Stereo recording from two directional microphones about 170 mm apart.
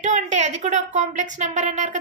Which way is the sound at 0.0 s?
45° right (ahead or behind).